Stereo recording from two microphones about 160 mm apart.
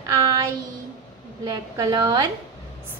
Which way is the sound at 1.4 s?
20° right (ahead or behind).